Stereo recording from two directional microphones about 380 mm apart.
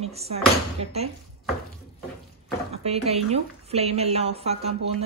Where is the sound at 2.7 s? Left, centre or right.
Centre.